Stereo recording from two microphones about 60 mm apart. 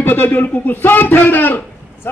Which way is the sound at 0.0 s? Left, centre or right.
Left.